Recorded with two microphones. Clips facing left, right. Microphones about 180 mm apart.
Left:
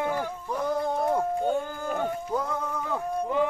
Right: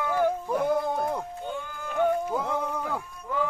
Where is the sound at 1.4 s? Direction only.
40° left (ahead or behind).